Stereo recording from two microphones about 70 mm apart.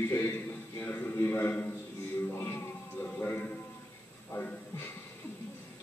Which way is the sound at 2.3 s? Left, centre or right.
Left.